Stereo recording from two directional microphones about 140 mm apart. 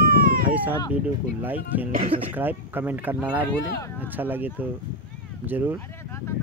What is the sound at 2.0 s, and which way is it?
Speech, 45° right (ahead or behind).